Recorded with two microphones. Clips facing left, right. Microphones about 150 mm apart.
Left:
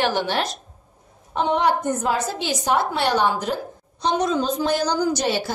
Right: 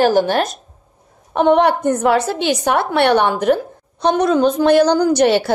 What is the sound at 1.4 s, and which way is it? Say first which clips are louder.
A woman's voice: right 7 dB; 60° right (ahead or behind).